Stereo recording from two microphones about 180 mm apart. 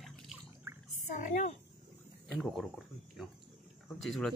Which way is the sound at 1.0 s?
45° left (ahead or behind).